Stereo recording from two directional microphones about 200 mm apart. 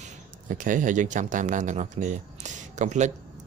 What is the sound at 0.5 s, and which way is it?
Speech, 40° right (ahead or behind).